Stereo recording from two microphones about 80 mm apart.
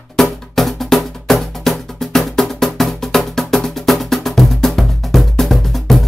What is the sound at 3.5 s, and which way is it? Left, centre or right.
Music, centre.